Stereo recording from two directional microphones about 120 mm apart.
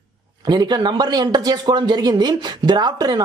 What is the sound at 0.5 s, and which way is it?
A man's voice, 35° right (ahead or behind).